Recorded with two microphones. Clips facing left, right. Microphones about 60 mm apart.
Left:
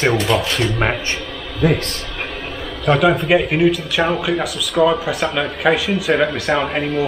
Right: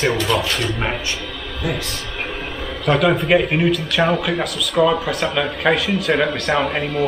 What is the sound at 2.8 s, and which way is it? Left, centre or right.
Speech, centre.